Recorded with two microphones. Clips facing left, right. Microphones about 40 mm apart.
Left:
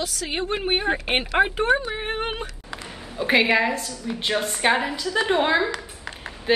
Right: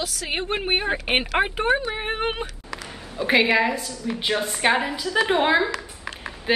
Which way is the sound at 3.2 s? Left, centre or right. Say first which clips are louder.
Even; centre.